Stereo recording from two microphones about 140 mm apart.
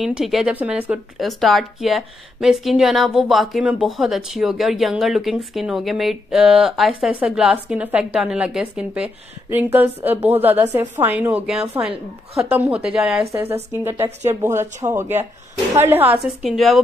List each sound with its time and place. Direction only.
0.0 s a woman's voice: centre (ahead or behind)
13.3 s a woman's voice: 15° right (ahead or behind)
16.4 s a woman's voice: centre (ahead or behind)